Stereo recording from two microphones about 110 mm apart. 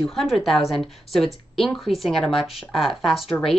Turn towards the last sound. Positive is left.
turn(degrees=0)  # may be behind; listen again after turning